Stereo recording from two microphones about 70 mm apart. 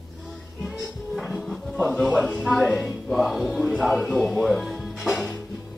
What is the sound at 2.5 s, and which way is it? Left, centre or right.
Music, centre.